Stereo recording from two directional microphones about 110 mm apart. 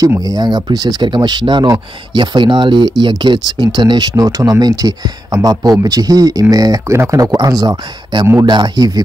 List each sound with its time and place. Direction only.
0.2 s speech: 35° right (ahead or behind)